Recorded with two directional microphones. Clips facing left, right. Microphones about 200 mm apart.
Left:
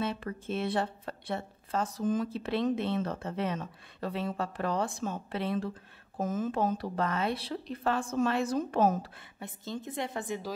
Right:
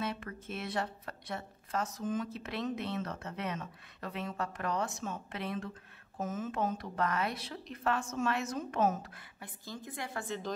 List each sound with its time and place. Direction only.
0.0 s speech: 30° left (ahead or behind)